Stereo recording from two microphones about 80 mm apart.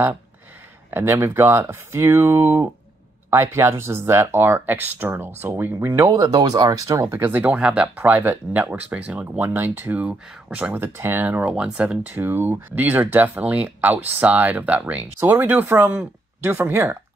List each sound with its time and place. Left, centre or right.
0.9 s speech: right
6.1 s speech: right; by 8.1 s centre
8.1 s speech: right
10.7 s speech: right